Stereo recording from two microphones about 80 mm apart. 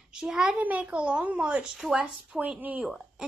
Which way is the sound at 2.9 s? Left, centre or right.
Centre.